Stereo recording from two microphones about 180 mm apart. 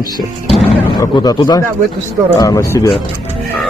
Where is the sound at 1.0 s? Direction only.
20° left (ahead or behind).